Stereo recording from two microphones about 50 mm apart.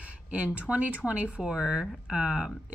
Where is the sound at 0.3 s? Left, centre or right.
Right; by 2.5 s centre.